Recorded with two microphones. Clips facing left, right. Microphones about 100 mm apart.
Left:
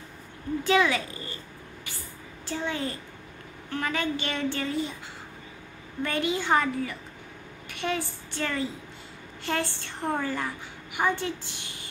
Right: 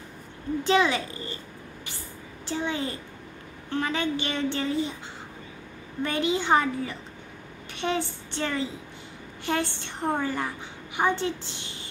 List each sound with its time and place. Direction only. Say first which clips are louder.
0.7 s speech: right 1 dB; 25° right (ahead or behind)
2.4 s a woman's voice: right 2 dB; 20° right (ahead or behind)
6.0 s a woman's voice: right 2 dB; 20° right (ahead or behind)